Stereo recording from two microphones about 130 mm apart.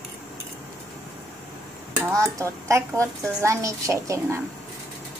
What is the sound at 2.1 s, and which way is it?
A woman's voice, 25° right (ahead or behind).